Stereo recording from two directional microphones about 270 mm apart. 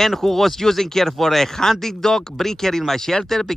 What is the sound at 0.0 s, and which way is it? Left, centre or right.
Speech, centre.